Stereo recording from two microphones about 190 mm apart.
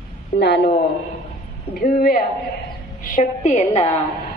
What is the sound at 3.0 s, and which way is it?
Speech, 40° left (ahead or behind).